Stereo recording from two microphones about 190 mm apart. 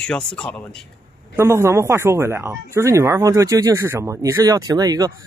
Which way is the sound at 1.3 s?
15° right (ahead or behind).